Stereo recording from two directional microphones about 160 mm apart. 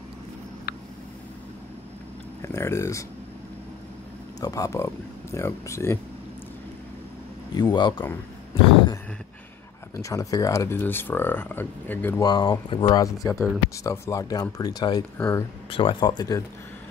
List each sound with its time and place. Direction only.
0.7 s a sound: 85° left
2.4 s speech: 15° left (ahead or behind)
4.4 s speech: 20° left (ahead or behind)
7.5 s speech: 25° left (ahead or behind)
9.9 s speech: 20° left (ahead or behind)
12.2 s speech: 25° left (ahead or behind)
15.1 s speech: 10° left (ahead or behind)
15.7 s speech: 35° left (ahead or behind)